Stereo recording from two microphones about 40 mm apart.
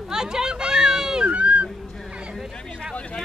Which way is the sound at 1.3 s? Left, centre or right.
Right.